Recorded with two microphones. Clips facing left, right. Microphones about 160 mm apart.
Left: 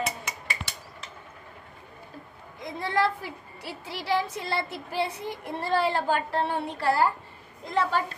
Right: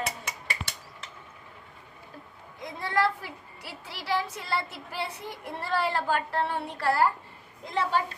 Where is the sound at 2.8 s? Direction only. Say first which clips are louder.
Left 1 dB; 20° left (ahead or behind).